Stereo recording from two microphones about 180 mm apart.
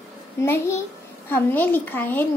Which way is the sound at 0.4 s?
15° left (ahead or behind).